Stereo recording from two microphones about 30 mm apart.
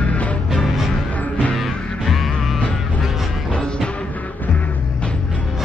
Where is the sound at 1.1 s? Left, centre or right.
Left.